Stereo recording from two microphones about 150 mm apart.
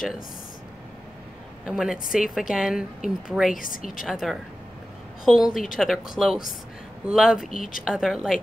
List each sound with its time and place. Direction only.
1.7 s a woman's voice: 5° right (ahead or behind)
3.5 s a woman's voice: 65° left (ahead or behind)
4.0 s a woman's voice: centre (ahead or behind)